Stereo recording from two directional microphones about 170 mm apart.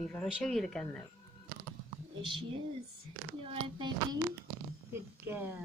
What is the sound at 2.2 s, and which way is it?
Speech, 30° right (ahead or behind).